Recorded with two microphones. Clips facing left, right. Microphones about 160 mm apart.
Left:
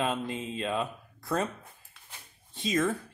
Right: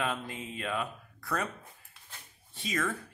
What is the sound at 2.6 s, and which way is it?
Speech, 20° left (ahead or behind).